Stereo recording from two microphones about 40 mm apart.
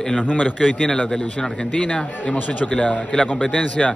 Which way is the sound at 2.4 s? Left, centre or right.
Left.